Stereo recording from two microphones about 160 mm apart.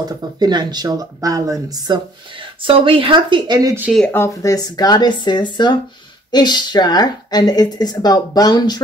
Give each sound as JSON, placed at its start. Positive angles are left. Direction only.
{"t": 0.0, "sound": "speech", "side_deg": -25}
{"t": 4.1, "sound": "speech", "side_deg": 20}